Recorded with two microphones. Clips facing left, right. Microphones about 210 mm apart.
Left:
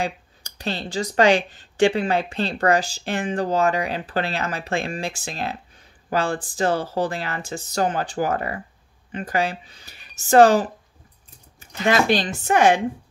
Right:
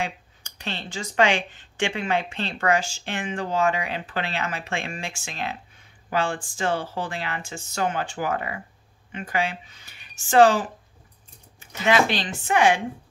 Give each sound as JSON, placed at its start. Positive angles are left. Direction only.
{"t": 0.0, "sound": "speech", "side_deg": 35}